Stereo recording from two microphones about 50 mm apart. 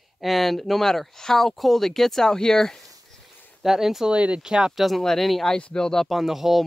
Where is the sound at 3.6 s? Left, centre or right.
Centre.